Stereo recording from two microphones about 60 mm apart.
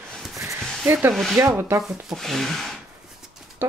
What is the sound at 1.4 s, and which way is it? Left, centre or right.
Speech, right.